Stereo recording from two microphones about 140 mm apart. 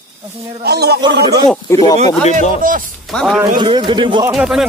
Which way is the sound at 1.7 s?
25° left (ahead or behind).